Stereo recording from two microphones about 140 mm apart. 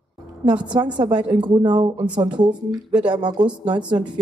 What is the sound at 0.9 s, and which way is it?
Speech, 35° right (ahead or behind).